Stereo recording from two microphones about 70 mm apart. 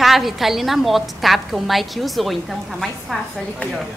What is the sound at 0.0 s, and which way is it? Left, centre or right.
A woman's voice, centre.